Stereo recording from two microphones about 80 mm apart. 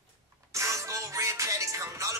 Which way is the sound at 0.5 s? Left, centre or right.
Right.